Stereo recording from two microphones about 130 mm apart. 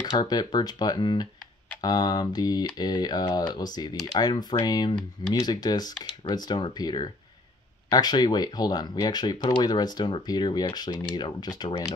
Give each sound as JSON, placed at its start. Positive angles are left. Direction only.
{"t": 0.0, "sound": "speech", "side_deg": 30}